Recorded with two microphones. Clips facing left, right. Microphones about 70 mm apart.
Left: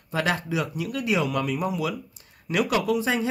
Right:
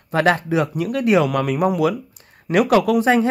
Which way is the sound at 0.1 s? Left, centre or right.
Right.